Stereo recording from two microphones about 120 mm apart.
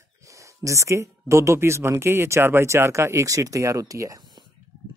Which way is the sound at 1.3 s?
25° right (ahead or behind).